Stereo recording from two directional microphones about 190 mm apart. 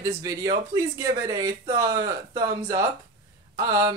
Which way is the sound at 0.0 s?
20° right (ahead or behind).